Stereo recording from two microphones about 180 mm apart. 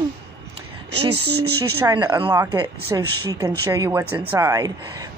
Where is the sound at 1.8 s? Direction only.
20° right (ahead or behind).